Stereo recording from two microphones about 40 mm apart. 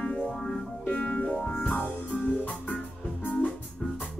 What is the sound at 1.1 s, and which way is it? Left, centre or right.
Music, left.